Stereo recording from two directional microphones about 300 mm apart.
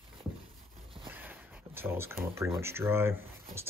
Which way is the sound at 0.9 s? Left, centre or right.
Centre.